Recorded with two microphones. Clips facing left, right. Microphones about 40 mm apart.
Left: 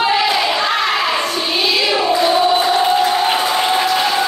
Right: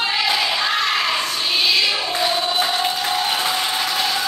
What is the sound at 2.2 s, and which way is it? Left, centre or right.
Music, centre.